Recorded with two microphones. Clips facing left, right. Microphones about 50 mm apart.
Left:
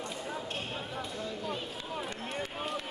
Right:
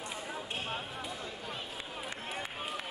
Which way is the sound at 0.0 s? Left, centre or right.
Centre.